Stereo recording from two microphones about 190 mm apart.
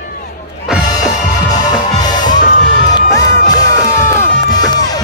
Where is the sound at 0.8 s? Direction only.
20° left (ahead or behind).